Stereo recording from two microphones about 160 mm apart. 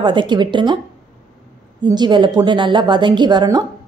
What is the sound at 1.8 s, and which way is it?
A woman's voice, 30° right (ahead or behind).